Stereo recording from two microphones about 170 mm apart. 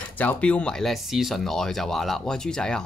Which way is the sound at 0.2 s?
10° left (ahead or behind).